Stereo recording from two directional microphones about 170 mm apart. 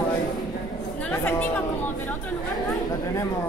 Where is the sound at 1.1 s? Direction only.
10° left (ahead or behind).